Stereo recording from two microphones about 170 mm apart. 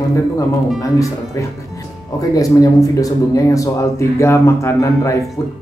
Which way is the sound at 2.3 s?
20° left (ahead or behind).